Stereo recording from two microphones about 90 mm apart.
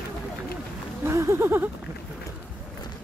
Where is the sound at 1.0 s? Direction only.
30° right (ahead or behind).